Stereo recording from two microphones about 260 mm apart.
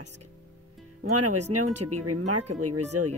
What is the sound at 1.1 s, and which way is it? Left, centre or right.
Speech, right.